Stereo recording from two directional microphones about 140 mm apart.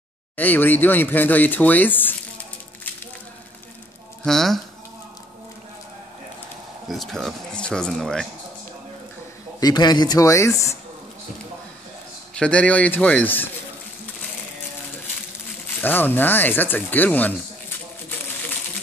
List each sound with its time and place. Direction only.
0.4 s speech: 15° left (ahead or behind)
4.2 s speech: 5° left (ahead or behind)
6.9 s speech: centre (ahead or behind)
9.6 s speech: 30° left (ahead or behind)
12.4 s speech: 10° left (ahead or behind)
15.8 s speech: 15° left (ahead or behind)